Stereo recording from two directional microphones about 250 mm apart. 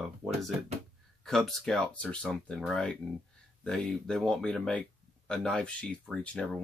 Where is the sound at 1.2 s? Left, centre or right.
Centre.